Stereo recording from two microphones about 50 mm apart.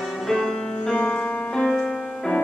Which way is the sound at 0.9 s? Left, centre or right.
Centre.